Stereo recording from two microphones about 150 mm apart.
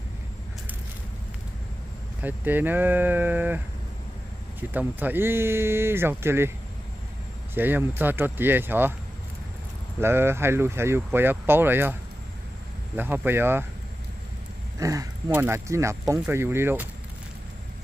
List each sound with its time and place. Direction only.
2.2 s speech: 10° right (ahead or behind)
7.5 s speech: 15° right (ahead or behind)
9.9 s speech: 15° right (ahead or behind)
14.8 s speech: 25° right (ahead or behind)